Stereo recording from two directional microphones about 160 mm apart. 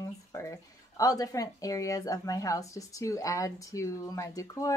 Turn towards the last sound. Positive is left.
turn(degrees=20)  # may be behind; listen again after turning